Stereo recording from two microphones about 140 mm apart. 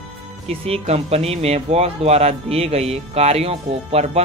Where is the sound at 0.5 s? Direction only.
50° right (ahead or behind).